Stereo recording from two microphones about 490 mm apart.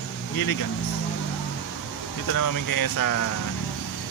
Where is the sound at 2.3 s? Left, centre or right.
Left.